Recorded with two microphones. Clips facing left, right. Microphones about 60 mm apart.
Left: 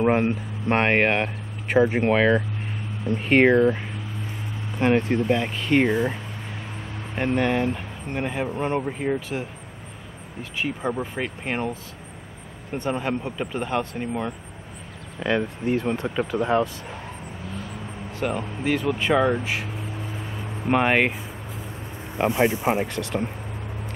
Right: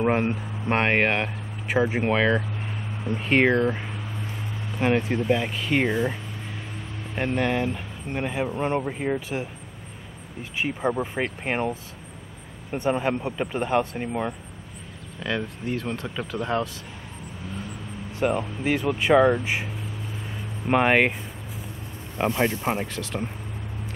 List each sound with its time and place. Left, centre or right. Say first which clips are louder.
0.0 s speech: left 2 dB; centre
7.2 s speech: left 2 dB; centre
10.6 s speech: right 1 dB; centre
15.1 s speech: left 5 dB; centre
18.2 s speech: right 2 dB; centre
20.6 s speech: even; centre
22.1 s speech: left 3 dB; centre